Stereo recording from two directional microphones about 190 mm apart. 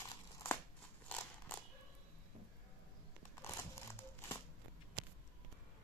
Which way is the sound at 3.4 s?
15° left (ahead or behind).